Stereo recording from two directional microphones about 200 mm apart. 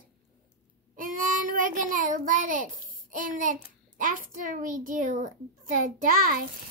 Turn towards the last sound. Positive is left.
turn(degrees=-45)  # may be behind; listen again after turning